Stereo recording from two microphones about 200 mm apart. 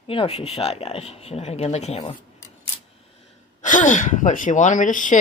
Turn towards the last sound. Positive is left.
turn(degrees=40)  # may be behind; listen again after turning